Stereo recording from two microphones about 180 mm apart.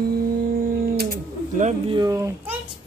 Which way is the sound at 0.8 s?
55° right (ahead or behind).